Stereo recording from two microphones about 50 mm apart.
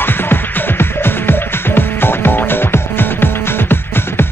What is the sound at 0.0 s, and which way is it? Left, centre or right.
Music, left.